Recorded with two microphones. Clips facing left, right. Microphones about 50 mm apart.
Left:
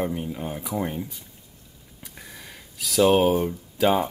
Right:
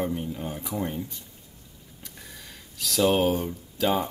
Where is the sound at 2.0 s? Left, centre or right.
Centre.